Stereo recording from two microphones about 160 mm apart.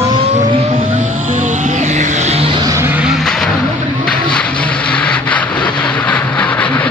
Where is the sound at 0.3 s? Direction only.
50° right (ahead or behind).